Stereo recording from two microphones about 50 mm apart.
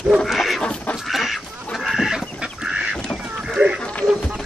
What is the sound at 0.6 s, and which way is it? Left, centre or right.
Chicken, left.